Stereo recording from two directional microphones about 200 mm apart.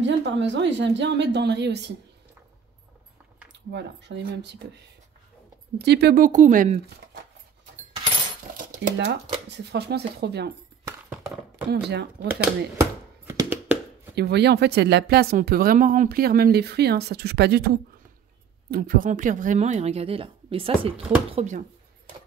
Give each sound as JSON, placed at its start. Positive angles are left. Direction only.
{"t": 0.0, "sound": "a woman's voice", "side_deg": -65}
{"t": 3.7, "sound": "a woman's voice", "side_deg": -60}
{"t": 5.8, "sound": "speech", "side_deg": -55}
{"t": 8.5, "sound": "a sound", "side_deg": -45}
{"t": 9.5, "sound": "a woman's voice", "side_deg": -55}
{"t": 11.9, "sound": "a woman's voice", "side_deg": -60}
{"t": 12.3, "sound": "a sound", "side_deg": -10}
{"t": 14.1, "sound": "a woman's voice", "side_deg": -55}